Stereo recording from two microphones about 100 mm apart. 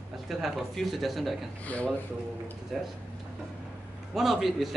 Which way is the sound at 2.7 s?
Centre (ahead or behind).